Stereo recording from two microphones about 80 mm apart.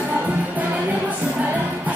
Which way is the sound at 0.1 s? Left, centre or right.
Centre.